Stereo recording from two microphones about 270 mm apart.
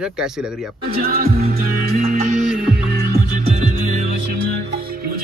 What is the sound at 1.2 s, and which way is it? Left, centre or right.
Music, right.